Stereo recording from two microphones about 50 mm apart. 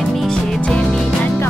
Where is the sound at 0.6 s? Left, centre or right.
Centre.